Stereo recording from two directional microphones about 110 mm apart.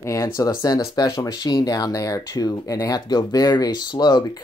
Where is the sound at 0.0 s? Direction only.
30° left (ahead or behind).